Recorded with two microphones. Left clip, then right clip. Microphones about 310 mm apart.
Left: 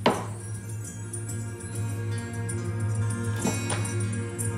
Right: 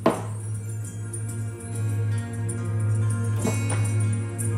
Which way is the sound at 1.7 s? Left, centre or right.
Centre.